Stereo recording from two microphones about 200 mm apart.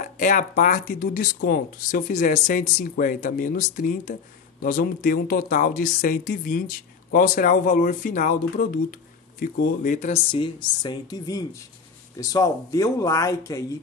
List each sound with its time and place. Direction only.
0.0 s speech: 40° left (ahead or behind); by 13.7 s 15° left (ahead or behind)